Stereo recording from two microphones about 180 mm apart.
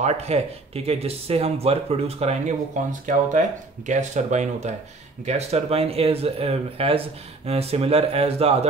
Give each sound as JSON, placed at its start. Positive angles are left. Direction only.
{"t": 0.0, "sound": "speech", "side_deg": -35}